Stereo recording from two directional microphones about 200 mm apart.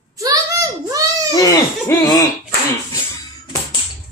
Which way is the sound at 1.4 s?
15° left (ahead or behind).